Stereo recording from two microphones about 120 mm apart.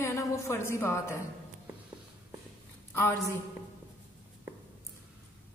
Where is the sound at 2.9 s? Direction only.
20° left (ahead or behind).